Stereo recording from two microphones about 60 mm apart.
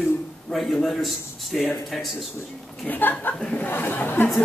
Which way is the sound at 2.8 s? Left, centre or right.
Left.